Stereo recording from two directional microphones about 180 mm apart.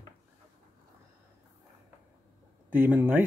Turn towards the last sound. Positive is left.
turn(degrees=-10)  # may be behind; listen again after turning